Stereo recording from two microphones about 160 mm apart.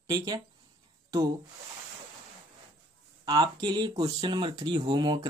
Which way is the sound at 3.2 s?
25° right (ahead or behind).